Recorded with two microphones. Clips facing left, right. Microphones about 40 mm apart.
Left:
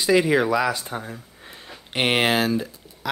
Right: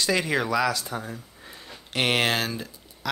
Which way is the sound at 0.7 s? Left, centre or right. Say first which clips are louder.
Left 1 dB; left.